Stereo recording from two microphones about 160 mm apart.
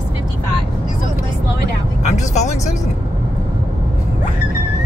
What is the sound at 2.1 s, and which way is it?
Music, 45° left (ahead or behind).